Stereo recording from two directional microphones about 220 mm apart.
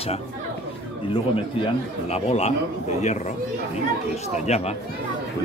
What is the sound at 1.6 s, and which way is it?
Speech, 30° left (ahead or behind).